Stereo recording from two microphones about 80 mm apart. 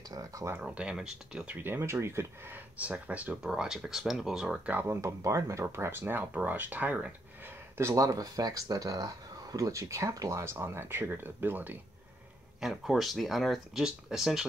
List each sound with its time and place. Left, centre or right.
0.1 s speech: right
0.6 s speech: centre
1.6 s speech: right
2.8 s speech: centre
3.4 s speech: centre
4.8 s speech: right; by 7.2 s centre
7.7 s speech: right
10.4 s speech: right
12.5 s speech: centre